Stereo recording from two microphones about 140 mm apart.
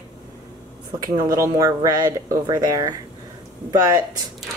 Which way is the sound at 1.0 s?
25° right (ahead or behind).